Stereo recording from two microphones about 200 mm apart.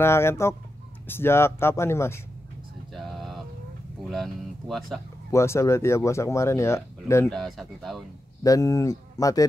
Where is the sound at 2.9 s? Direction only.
Centre (ahead or behind).